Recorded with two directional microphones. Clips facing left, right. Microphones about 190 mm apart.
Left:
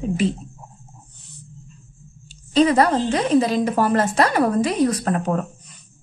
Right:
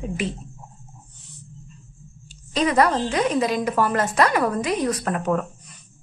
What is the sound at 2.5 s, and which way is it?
Speech, 30° left (ahead or behind).